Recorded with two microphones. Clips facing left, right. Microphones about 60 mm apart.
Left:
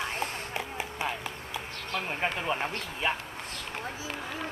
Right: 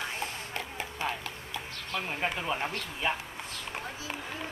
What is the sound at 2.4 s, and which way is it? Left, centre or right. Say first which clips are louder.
Speech: left 2 dB; centre.